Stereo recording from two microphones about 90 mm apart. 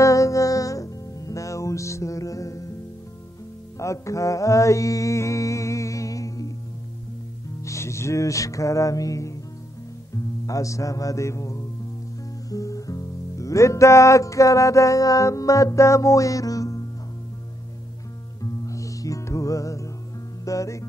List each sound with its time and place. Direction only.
0.0 s music: 35° left (ahead or behind)
3.7 s music: 35° left (ahead or behind)
7.6 s music: 35° left (ahead or behind)
10.4 s music: 40° left (ahead or behind)
18.4 s music: 35° left (ahead or behind)